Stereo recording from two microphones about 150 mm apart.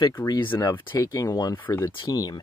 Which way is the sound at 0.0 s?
20° left (ahead or behind).